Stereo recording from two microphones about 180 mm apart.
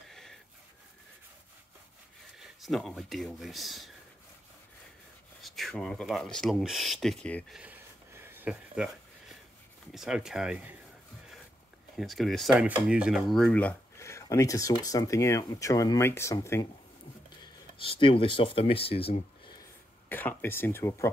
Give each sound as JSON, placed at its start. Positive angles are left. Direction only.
{"t": 0.1, "sound": "a sound", "side_deg": 0}
{"t": 2.3, "sound": "speech", "side_deg": 0}
{"t": 5.4, "sound": "speech", "side_deg": 0}
{"t": 7.5, "sound": "a sound", "side_deg": -10}
{"t": 9.9, "sound": "speech", "side_deg": -5}
{"t": 12.0, "sound": "speech", "side_deg": 0}
{"t": 17.4, "sound": "speech", "side_deg": 30}
{"t": 20.1, "sound": "speech", "side_deg": 10}